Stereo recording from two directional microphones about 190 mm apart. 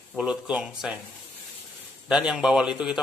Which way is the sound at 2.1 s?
5° right (ahead or behind).